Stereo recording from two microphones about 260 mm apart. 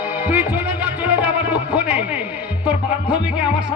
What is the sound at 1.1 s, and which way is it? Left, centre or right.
Music, centre.